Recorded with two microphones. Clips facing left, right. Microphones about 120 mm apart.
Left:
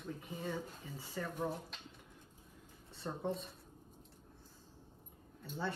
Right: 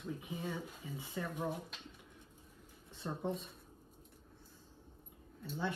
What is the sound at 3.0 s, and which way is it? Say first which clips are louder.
Speech: right 1 dB; centre (ahead or behind).